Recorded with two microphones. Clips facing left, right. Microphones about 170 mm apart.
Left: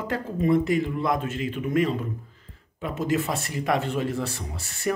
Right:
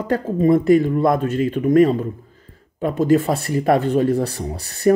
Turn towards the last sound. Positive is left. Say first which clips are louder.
# right 11 dB
turn(degrees=-35)  # may be behind; listen again after turning